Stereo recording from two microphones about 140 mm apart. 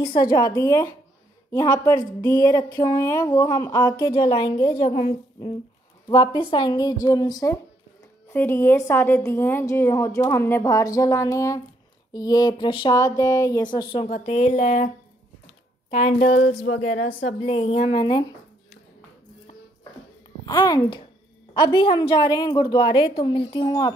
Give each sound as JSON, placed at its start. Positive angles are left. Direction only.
{"t": 0.2, "sound": "a woman's voice", "side_deg": 30}
{"t": 4.0, "sound": "a woman's voice", "side_deg": 40}
{"t": 4.8, "sound": "a woman's voice", "side_deg": 50}
{"t": 6.0, "sound": "a woman's voice", "side_deg": 30}
{"t": 8.3, "sound": "a woman's voice", "side_deg": 15}
{"t": 14.0, "sound": "a woman's voice", "side_deg": 55}
{"t": 15.9, "sound": "a woman's voice", "side_deg": 55}
{"t": 17.4, "sound": "a woman's voice", "side_deg": 45}
{"t": 20.4, "sound": "a woman's voice", "side_deg": 30}